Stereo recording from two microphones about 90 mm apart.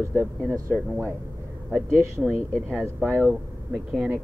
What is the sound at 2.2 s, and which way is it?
Speech, 5° left (ahead or behind).